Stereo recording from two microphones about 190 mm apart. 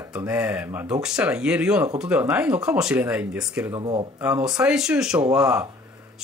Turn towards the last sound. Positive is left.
turn(degrees=-5)  # may be behind; listen again after turning